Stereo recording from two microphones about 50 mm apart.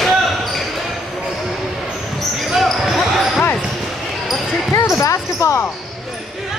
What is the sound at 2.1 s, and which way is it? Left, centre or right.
Basketball bounce, centre.